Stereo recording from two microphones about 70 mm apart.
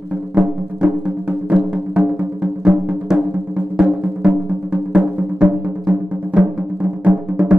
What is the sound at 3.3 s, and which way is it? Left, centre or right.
Music, right.